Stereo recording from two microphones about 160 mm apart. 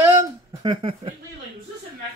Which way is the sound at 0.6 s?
30° right (ahead or behind).